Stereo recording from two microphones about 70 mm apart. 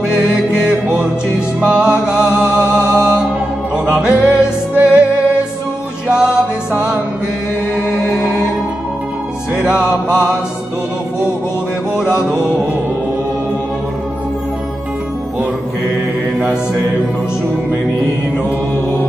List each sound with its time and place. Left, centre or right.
0.7 s music: centre
4.3 s music: centre
6.0 s music: centre
9.7 s mantra: centre